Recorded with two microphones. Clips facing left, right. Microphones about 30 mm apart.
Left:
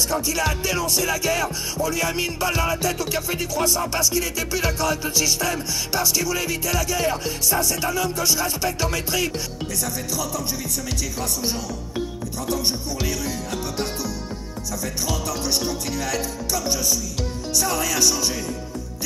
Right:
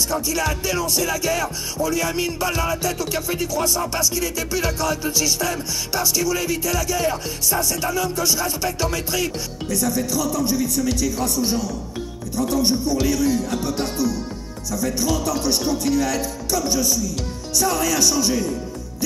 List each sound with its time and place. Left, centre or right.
0.1 s music: centre
10.4 s speech: left
11.4 s music: centre
12.9 s music: centre
15.8 s music: centre
18.0 s music: left